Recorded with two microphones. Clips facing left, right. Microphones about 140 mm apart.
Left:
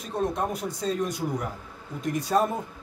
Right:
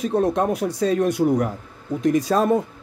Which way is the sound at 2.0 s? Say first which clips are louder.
Right 6 dB; 90° right.